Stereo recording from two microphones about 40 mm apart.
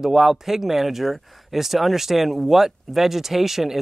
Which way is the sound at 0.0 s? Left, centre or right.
Centre.